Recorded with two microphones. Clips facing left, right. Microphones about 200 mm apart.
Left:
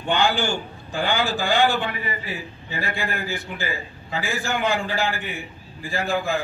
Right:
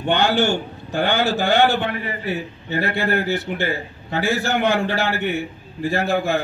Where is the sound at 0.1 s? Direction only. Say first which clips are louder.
Right 4 dB; 65° right (ahead or behind).